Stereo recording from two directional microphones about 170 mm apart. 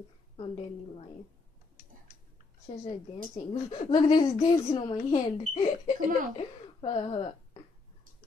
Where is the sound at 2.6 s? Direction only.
35° left (ahead or behind).